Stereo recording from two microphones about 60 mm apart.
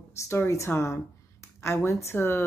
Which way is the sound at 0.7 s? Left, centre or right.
Left.